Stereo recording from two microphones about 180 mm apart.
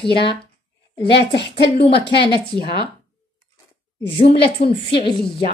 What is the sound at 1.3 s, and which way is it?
Speech, 70° left (ahead or behind).